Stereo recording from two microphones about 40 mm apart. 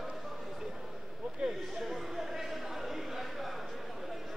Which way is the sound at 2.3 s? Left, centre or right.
Centre.